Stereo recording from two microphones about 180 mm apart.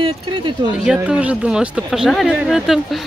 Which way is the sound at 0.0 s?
25° right (ahead or behind).